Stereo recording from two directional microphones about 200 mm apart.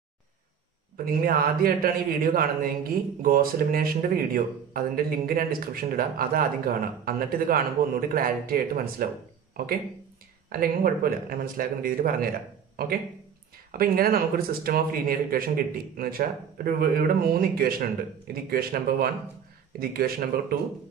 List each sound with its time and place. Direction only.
0.9 s speech: 45° right (ahead or behind)
13.7 s speech: 45° right (ahead or behind)